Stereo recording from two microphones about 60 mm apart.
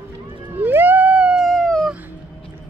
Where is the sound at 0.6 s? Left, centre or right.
Right.